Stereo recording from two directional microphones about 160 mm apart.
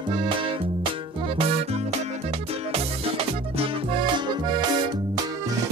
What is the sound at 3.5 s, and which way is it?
Music, 35° right (ahead or behind).